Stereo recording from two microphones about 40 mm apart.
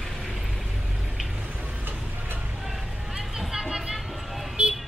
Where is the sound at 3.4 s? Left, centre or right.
Centre.